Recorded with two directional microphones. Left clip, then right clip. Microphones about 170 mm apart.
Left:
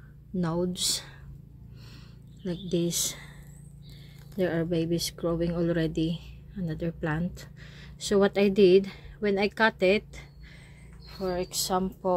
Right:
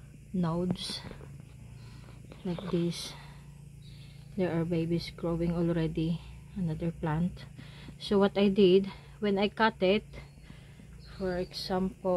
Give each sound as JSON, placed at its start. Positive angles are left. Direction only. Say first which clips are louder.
{"t": 0.4, "sound": "speech", "louder": "left 4 dB", "side_deg": 15}
{"t": 2.4, "sound": "speech", "louder": "left 3 dB", "side_deg": 15}
{"t": 4.4, "sound": "speech", "louder": "left 4 dB", "side_deg": 5}
{"t": 11.2, "sound": "a woman's voice", "louder": "left 4 dB", "side_deg": 5}